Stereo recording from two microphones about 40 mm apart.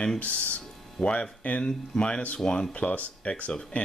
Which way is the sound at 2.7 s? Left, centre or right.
Left.